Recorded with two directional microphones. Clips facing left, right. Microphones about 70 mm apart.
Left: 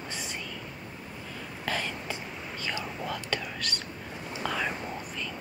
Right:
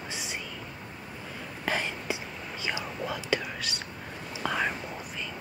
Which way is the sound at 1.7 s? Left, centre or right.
Centre.